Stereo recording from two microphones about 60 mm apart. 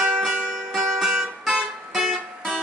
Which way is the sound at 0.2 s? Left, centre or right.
Centre.